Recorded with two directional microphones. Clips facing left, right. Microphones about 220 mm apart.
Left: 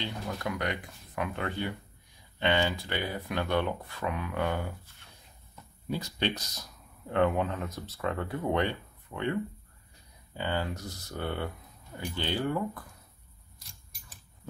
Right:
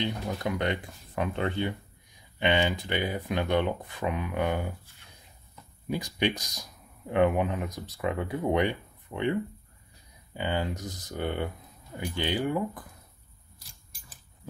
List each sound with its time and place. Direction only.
0.0 s speech: 25° right (ahead or behind)
5.9 s speech: 15° right (ahead or behind)